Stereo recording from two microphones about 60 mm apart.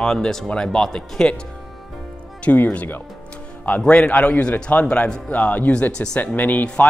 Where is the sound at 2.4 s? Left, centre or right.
Left.